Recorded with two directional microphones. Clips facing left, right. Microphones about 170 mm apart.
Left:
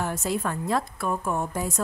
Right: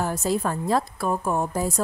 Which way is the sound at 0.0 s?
35° right (ahead or behind).